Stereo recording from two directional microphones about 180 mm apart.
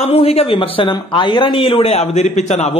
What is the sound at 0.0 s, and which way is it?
Speech, 35° left (ahead or behind).